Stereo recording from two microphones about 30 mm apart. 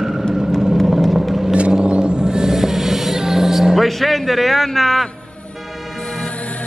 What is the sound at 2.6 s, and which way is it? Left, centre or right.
Vehicle, centre.